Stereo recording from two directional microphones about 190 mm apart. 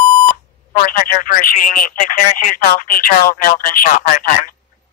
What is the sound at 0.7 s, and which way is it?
Speech, 45° left (ahead or behind).